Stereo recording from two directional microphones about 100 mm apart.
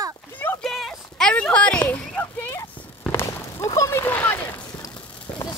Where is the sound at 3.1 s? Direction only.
25° left (ahead or behind).